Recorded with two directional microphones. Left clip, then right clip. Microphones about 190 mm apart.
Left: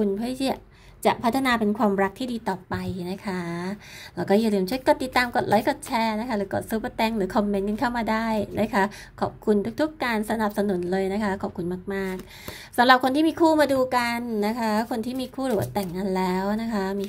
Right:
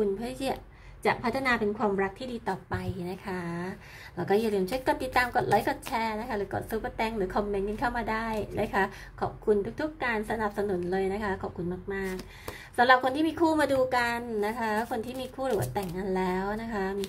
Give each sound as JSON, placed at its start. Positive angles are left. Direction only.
{"t": 0.0, "sound": "a woman's voice", "side_deg": 35}
{"t": 1.0, "sound": "a woman's voice", "side_deg": 45}